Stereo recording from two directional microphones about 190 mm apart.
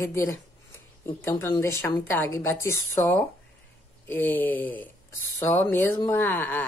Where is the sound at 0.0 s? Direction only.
15° left (ahead or behind).